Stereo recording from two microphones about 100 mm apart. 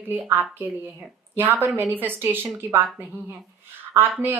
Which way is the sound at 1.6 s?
20° right (ahead or behind).